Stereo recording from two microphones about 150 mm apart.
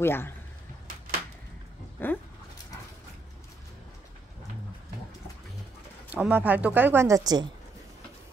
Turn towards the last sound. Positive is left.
turn(degrees=-25)  # may be behind; listen again after turning